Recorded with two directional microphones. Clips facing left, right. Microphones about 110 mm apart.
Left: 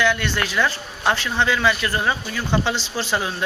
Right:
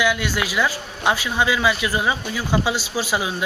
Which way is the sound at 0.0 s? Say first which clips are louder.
Even; 10° right (ahead or behind).